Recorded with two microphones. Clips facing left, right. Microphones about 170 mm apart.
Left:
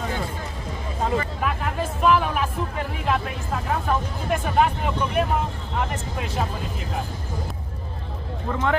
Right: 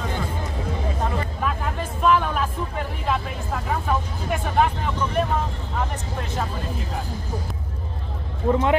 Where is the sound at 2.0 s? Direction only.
5° left (ahead or behind).